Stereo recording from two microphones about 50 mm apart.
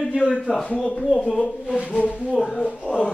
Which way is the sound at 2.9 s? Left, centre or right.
Right.